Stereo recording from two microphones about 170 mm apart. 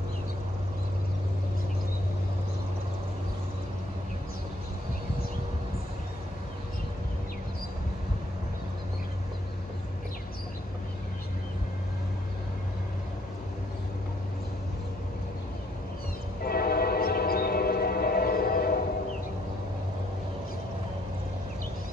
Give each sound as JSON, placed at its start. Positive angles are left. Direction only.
{"t": 16.4, "sound": "train", "side_deg": 65}